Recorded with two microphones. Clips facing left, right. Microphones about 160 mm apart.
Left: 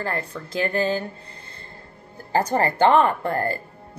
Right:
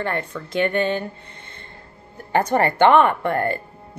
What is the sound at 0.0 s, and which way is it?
Speech, 35° left (ahead or behind).